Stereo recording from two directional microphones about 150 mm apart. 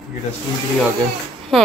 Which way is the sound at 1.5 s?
Centre (ahead or behind).